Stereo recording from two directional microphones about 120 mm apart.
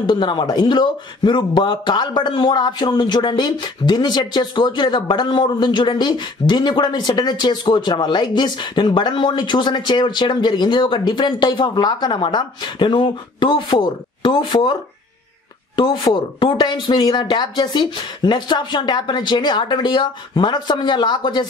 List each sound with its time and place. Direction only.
0.0 s speech: 40° left (ahead or behind)